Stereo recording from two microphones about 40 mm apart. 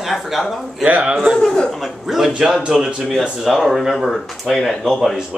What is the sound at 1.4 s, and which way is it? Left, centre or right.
Speech, centre.